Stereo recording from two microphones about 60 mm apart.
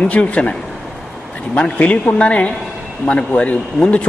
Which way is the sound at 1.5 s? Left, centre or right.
Left.